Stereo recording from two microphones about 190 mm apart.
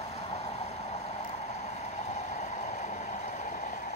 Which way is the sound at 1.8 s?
35° left (ahead or behind).